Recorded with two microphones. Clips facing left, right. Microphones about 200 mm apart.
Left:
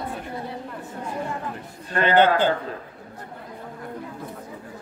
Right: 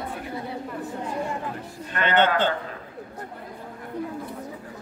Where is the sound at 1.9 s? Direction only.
35° left (ahead or behind).